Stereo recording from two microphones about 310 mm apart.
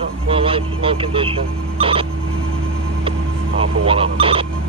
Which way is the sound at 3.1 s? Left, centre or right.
Centre.